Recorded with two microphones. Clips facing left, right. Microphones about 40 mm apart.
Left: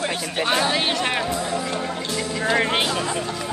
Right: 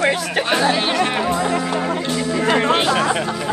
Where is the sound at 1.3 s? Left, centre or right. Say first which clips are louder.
Right 6 dB; right.